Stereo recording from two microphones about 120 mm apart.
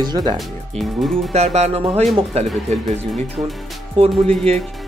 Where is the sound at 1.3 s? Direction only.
65° right (ahead or behind).